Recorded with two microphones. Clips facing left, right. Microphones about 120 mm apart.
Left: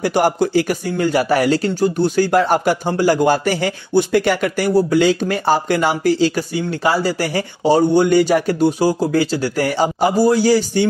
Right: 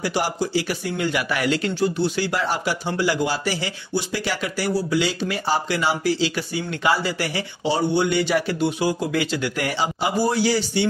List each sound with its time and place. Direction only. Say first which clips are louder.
0.0 s speech: left 8 dB; 50° left (ahead or behind)